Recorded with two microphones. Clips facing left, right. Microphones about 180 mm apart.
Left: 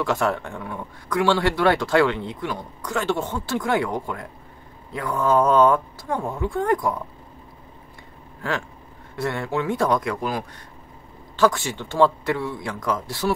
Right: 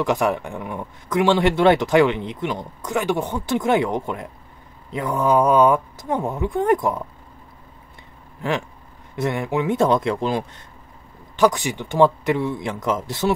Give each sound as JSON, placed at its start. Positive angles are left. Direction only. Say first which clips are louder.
{"t": 0.0, "sound": "speech", "louder": "right 2 dB", "side_deg": -15}
{"t": 8.4, "sound": "speech", "louder": "right 3 dB", "side_deg": -20}